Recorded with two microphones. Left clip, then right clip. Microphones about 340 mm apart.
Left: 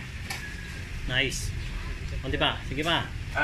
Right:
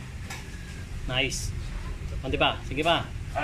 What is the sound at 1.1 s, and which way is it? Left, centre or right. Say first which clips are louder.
Speech: even; right.